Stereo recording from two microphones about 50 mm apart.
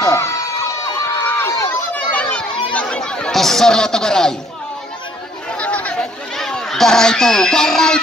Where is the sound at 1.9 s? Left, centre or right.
Left.